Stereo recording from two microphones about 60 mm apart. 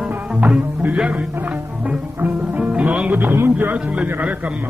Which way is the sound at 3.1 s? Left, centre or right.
Right.